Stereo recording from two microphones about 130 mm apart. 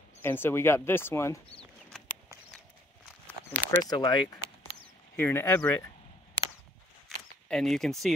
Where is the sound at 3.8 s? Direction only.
30° left (ahead or behind).